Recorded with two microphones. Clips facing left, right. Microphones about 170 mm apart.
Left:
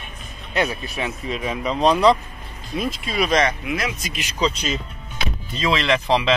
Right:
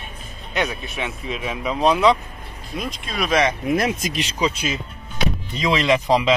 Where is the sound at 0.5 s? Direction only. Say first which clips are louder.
Left 1 dB; centre (ahead or behind).